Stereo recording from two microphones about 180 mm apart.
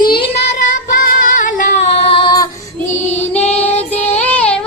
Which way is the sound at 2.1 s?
30° left (ahead or behind).